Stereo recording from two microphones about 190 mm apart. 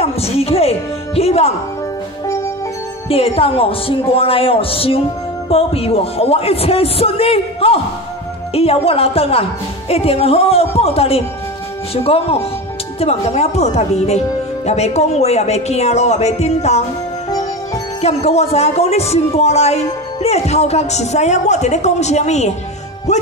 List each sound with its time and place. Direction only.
0.0 s a woman's voice: 30° left (ahead or behind)
3.1 s speech: 30° left (ahead or behind)
18.0 s speech: 35° left (ahead or behind)